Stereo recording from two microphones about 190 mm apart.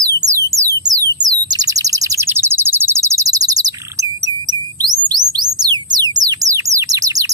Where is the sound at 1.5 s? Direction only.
20° right (ahead or behind).